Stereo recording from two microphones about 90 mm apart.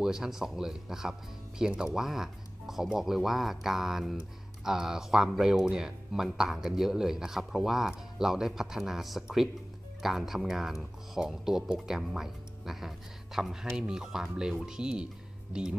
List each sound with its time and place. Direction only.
0.0 s speech: 5° right (ahead or behind)